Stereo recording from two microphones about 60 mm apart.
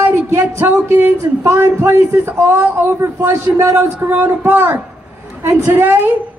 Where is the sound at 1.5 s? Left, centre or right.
Right.